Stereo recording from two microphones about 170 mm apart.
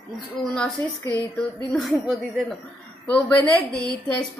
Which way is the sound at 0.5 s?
5° left (ahead or behind).